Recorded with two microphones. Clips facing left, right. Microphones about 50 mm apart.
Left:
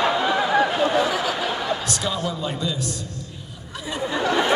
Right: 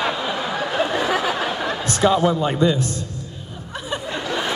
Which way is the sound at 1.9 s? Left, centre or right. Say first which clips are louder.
Right 9 dB; right.